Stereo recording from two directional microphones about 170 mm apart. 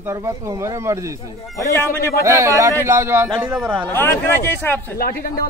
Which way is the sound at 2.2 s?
15° right (ahead or behind).